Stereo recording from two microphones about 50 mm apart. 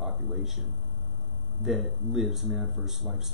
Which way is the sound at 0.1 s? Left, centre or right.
Centre.